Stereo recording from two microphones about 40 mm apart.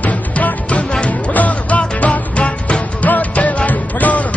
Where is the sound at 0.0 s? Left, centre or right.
Left.